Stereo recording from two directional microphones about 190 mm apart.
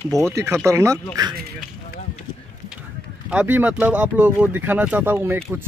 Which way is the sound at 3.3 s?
10° right (ahead or behind).